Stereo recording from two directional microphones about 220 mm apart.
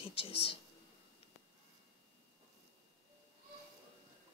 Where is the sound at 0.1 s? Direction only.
25° left (ahead or behind).